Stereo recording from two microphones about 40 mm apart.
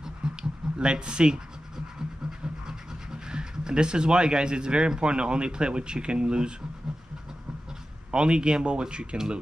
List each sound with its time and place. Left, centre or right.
0.0 s writing: right
2.6 s speech: centre
8.1 s speech: right